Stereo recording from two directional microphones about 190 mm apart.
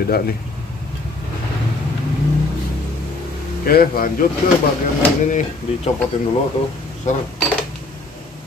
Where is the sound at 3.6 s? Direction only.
50° left (ahead or behind).